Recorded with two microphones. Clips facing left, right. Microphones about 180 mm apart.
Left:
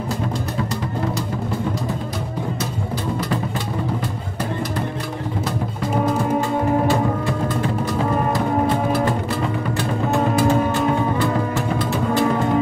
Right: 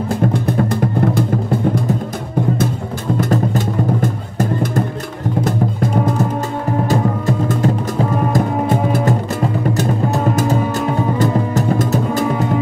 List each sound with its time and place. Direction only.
0.1 s music: 55° right (ahead or behind)
3.2 s music: 45° right (ahead or behind)
6.9 s music: 40° right (ahead or behind)